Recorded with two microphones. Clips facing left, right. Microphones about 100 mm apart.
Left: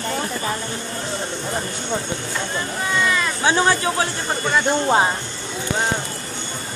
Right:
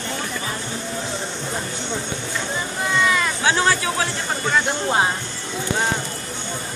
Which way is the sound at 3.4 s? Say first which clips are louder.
Left 3 dB; 20° left (ahead or behind).